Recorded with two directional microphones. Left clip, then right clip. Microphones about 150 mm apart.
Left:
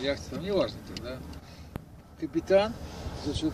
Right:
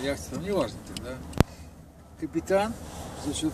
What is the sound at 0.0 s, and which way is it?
Speech, 55° right (ahead or behind).